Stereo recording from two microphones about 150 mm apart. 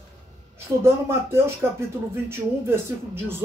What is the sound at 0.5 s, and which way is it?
Speech, 15° right (ahead or behind).